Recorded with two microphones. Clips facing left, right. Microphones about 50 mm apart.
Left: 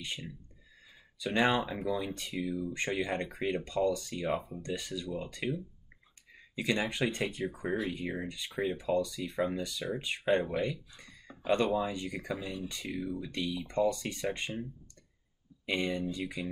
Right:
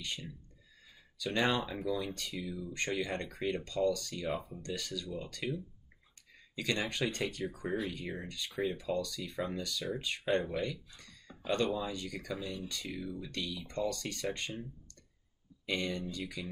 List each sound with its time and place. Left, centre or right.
0.0 s speech: centre
8.7 s speech: left